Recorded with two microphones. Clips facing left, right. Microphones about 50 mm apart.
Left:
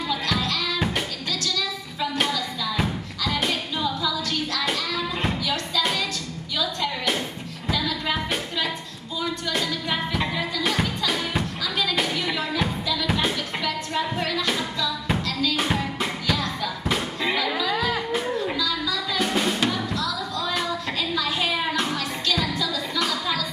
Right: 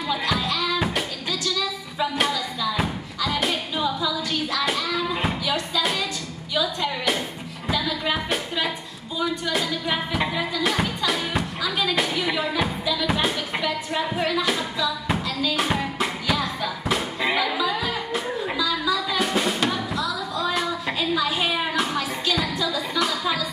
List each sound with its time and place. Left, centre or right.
0.1 s music: centre
3.8 s a sound: centre
6.5 s music: centre